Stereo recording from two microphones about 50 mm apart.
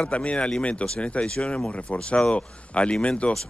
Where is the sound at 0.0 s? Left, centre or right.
Left.